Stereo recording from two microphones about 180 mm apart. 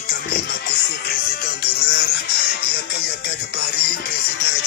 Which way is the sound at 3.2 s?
90° left.